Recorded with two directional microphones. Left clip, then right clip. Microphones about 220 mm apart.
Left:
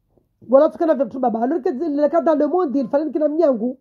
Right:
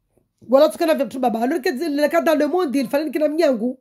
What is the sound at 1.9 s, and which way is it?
A woman's voice, 35° right (ahead or behind).